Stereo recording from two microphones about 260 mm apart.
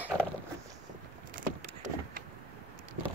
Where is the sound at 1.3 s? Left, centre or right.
Right.